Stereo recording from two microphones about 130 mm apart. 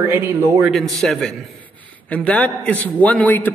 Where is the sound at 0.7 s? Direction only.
Centre (ahead or behind).